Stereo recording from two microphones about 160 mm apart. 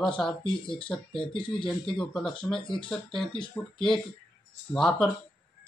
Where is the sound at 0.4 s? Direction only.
30° left (ahead or behind).